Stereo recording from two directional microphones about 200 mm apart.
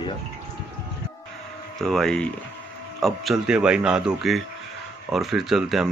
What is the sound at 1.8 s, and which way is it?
Speech, centre (ahead or behind).